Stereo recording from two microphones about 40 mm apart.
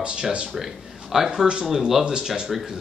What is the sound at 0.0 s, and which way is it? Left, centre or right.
Speech, right.